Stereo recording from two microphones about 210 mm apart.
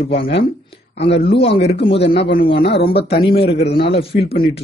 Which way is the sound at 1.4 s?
25° left (ahead or behind).